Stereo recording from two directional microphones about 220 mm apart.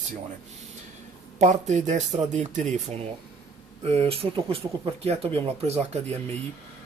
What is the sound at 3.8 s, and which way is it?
Speech, 25° right (ahead or behind).